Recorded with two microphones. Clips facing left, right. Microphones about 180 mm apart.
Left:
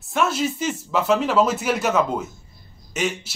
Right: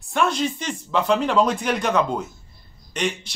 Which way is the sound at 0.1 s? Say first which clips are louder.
Even; 5° left (ahead or behind).